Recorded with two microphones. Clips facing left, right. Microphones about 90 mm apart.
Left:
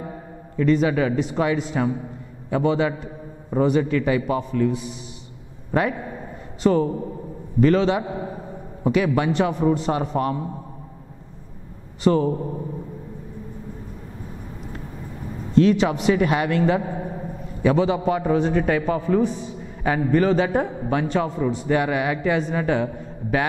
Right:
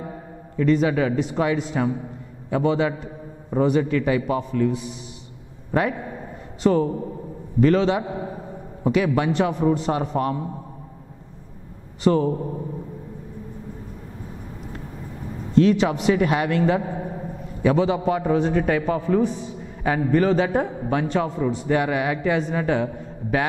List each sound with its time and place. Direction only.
0.6 s a man's voice: 15° left (ahead or behind)
5.7 s a man's voice: 15° left (ahead or behind)
12.0 s a man's voice: 15° left (ahead or behind)
15.6 s a man's voice: 10° left (ahead or behind)